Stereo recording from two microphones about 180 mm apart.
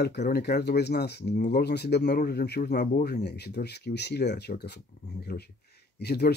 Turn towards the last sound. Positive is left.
turn(degrees=60)  # may be behind; listen again after turning